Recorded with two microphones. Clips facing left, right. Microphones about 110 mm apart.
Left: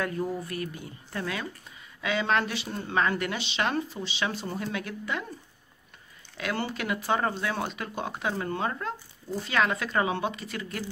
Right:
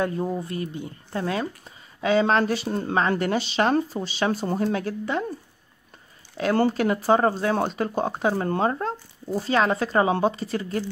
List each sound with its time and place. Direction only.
0.0 s speech: 25° right (ahead or behind)
6.3 s speech: 40° right (ahead or behind)